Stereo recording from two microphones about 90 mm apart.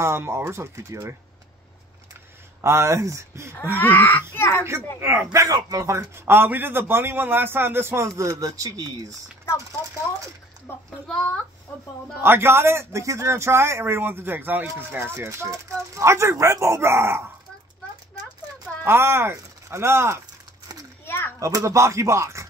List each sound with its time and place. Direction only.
0.0 s a man's voice: 30° right (ahead or behind)
2.6 s speech: 30° right (ahead or behind)
3.7 s speech: 20° left (ahead or behind)
5.0 s a man's voice: 25° right (ahead or behind)
8.2 s speech: 40° right (ahead or behind)
10.7 s speech: 25° left (ahead or behind)
11.1 s speech: 10° left (ahead or behind)
12.2 s a man's voice: 25° right (ahead or behind)
18.9 s a man's voice: 25° right (ahead or behind)
21.0 s a sound: 25° left (ahead or behind)
21.4 s speech: 35° right (ahead or behind)